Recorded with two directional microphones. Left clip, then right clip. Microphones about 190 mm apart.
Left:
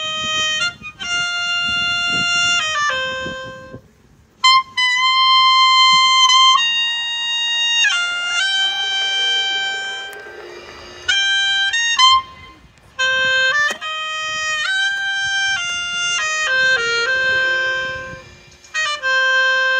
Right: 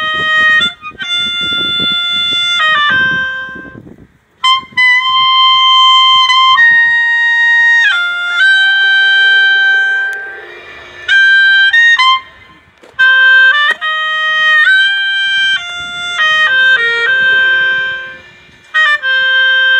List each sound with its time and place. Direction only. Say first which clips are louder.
0.0 s music: right 10 dB; 20° left (ahead or behind)
7.0 s fire alarm: right 11 dB; 35° right (ahead or behind)
7.4 s music: right 7 dB; 15° left (ahead or behind)